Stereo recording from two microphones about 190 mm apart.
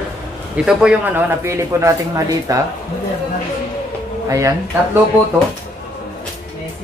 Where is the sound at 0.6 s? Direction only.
10° right (ahead or behind).